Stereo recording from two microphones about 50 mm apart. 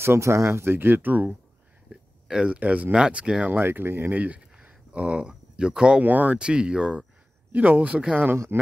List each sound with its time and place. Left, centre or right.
0.0 s speech: right
1.9 s a sound: centre
2.5 s speech: right
2.9 s speech: right
3.5 s speech: right
4.6 s a sound: right
5.6 s speech: centre
6.0 s speech: right
6.4 s speech: centre
7.5 s speech: right